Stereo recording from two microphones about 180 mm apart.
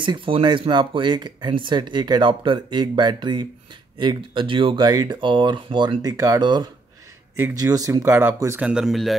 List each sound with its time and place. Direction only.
0.0 s speech: 25° right (ahead or behind); by 9.1 s centre (ahead or behind)